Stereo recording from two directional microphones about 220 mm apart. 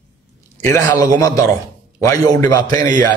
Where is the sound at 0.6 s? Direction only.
15° left (ahead or behind).